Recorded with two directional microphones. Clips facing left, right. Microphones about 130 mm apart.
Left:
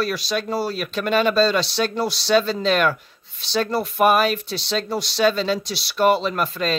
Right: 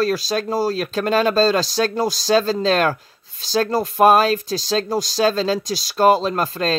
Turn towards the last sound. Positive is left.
turn(degrees=-40)  # may be behind; listen again after turning